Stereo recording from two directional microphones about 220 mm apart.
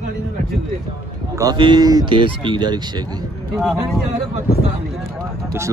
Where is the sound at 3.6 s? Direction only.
Centre (ahead or behind).